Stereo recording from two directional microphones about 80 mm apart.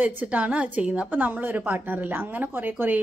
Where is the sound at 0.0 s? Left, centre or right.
Centre.